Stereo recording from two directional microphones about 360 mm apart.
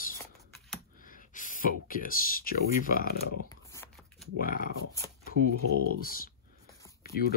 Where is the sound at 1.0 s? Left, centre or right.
Left.